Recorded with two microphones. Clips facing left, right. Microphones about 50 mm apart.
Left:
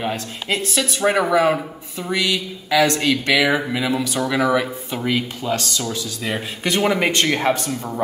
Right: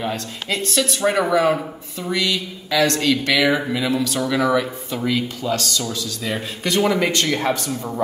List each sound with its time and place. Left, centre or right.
0.0 s speech: centre
4.9 s speech: left